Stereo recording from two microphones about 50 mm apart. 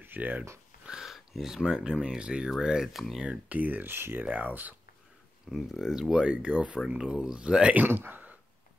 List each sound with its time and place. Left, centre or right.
0.0 s speech: right
0.8 s speech: centre
3.4 s speech: right
3.9 s speech: right
4.2 s speech: right
5.5 s speech: centre
7.7 s speech: right